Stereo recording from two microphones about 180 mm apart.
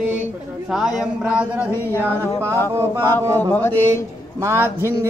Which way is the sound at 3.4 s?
10° left (ahead or behind).